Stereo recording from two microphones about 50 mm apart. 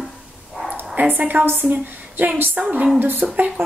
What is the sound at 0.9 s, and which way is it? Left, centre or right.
Speech, right.